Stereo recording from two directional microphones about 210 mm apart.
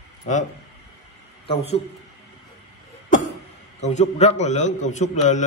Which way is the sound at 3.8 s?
35° left (ahead or behind).